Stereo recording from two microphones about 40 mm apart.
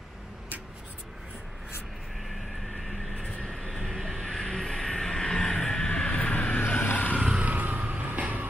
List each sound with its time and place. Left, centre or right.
3.4 s vehicle: centre; by 6.6 s left
6.8 s vehicle: left
7.2 s vehicle: right
7.4 s vehicle: right
8.2 s a sound: right